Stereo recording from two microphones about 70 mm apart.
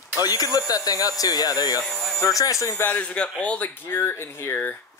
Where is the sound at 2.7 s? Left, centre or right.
Left.